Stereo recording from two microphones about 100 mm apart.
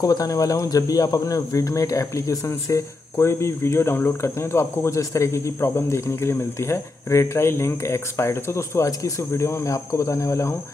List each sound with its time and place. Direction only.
0.0 s speech: 35° left (ahead or behind)